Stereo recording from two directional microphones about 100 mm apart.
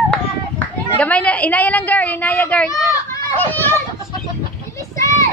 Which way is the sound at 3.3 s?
20° left (ahead or behind).